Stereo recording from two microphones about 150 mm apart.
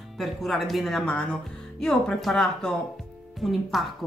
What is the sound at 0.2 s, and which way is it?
Speech, centre (ahead or behind).